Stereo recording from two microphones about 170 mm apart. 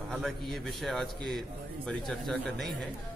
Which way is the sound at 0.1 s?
Centre (ahead or behind).